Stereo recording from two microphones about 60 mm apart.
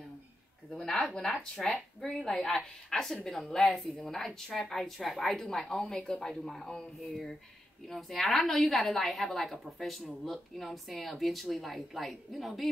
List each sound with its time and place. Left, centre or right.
0.7 s a woman's voice: centre